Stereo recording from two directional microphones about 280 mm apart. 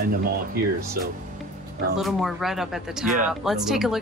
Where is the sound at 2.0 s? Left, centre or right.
Centre.